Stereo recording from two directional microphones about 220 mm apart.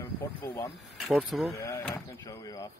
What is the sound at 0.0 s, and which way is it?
Speech, 10° left (ahead or behind).